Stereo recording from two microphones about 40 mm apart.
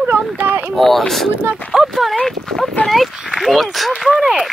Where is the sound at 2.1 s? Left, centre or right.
Centre.